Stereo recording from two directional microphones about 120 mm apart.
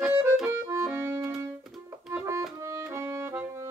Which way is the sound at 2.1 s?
20° right (ahead or behind).